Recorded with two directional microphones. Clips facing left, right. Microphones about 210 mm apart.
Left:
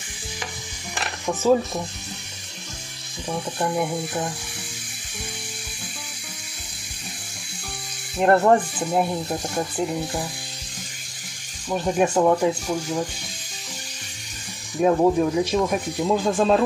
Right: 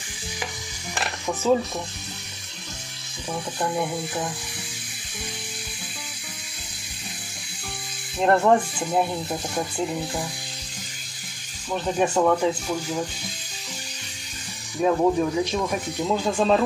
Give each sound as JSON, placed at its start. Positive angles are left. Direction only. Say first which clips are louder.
{"t": 3.3, "sound": "speech", "louder": "left 2 dB", "side_deg": 5}
{"t": 8.2, "sound": "speech", "louder": "left 2 dB", "side_deg": 5}
{"t": 11.7, "sound": "speech", "louder": "left 2 dB", "side_deg": 10}
{"t": 14.8, "sound": "speech", "louder": "left 2 dB", "side_deg": 10}